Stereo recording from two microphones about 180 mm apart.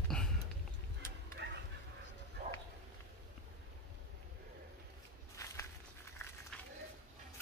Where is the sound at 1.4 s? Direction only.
65° right (ahead or behind).